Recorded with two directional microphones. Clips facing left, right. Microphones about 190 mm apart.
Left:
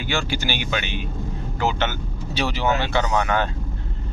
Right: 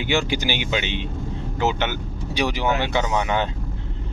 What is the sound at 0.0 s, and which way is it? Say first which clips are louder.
Speech: right 3 dB; 20° right (ahead or behind).